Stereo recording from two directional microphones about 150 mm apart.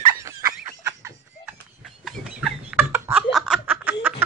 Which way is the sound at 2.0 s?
5° right (ahead or behind).